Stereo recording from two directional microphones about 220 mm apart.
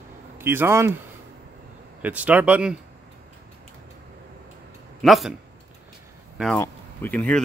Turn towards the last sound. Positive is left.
turn(degrees=5)  # may be behind; listen again after turning